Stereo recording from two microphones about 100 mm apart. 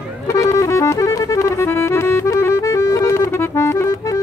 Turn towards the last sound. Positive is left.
turn(degrees=30)  # may be behind; listen again after turning